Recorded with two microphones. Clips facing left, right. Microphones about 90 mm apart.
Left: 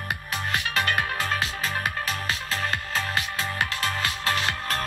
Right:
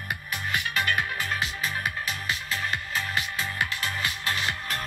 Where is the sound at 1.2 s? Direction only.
35° left (ahead or behind).